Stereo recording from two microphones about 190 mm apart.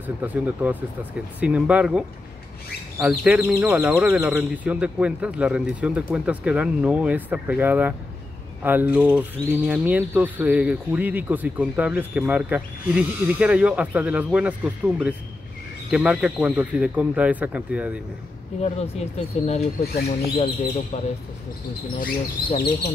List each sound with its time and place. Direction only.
0.0 s speech: 10° right (ahead or behind)
18.6 s speech: 35° left (ahead or behind)
19.8 s speech: 55° left (ahead or behind)
20.9 s speech: 35° left (ahead or behind)